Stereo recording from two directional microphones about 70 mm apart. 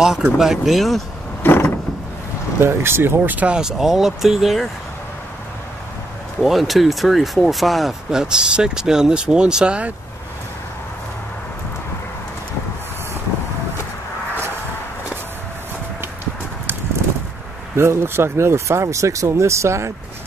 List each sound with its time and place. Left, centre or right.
0.0 s speech: centre
1.4 s mechanisms: left
2.6 s speech: right
3.5 s speech: centre
6.4 s speech: centre
17.7 s speech: right